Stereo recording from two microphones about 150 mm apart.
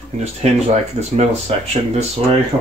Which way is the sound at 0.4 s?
50° right (ahead or behind).